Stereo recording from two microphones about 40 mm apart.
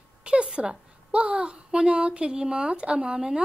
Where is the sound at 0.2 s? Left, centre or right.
Right.